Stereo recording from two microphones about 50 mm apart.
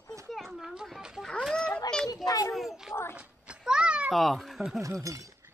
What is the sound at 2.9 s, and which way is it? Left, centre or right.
Speech, left.